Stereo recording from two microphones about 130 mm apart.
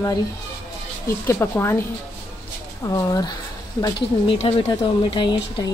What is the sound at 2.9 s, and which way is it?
Speech, 30° left (ahead or behind).